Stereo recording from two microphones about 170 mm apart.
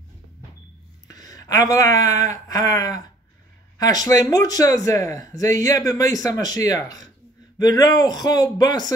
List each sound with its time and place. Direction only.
1.0 s speech: 20° left (ahead or behind)